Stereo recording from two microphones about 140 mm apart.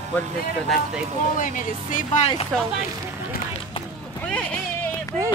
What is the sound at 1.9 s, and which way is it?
Speech, 55° left (ahead or behind).